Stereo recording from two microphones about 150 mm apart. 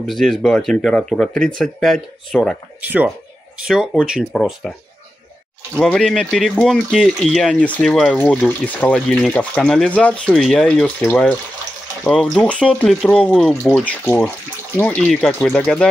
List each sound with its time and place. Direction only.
0.0 s speech: centre (ahead or behind)
2.8 s speech: 10° right (ahead or behind)
5.8 s speech: 5° left (ahead or behind)
12.1 s speech: 5° left (ahead or behind)
14.0 s speech: 15° left (ahead or behind)